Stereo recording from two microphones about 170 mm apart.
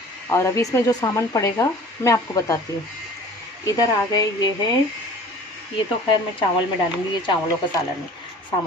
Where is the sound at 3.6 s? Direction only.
20° left (ahead or behind).